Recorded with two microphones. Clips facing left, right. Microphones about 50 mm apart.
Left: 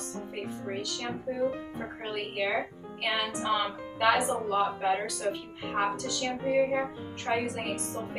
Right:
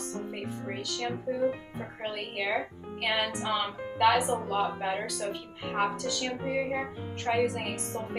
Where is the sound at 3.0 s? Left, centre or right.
Centre.